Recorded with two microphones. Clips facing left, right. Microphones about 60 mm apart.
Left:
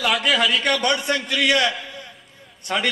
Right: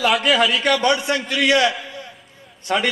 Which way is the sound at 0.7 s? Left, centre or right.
Centre.